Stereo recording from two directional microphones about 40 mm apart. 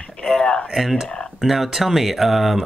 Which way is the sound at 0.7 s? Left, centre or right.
Centre.